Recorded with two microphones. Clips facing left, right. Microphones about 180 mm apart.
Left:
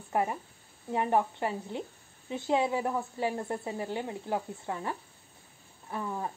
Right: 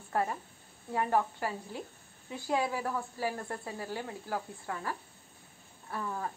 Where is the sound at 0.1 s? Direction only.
15° left (ahead or behind).